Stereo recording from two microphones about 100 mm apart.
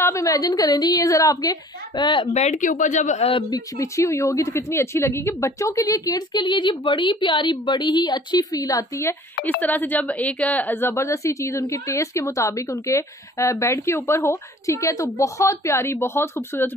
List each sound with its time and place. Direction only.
0.0 s speech: 30° left (ahead or behind); by 2.2 s 50° left (ahead or behind)
3.2 s a woman's voice: 75° left (ahead or behind)
3.4 s speech: 35° left (ahead or behind)
9.6 s a woman's voice: 15° left (ahead or behind)